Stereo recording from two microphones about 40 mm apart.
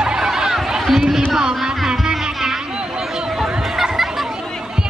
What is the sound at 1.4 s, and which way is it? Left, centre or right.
Music, centre.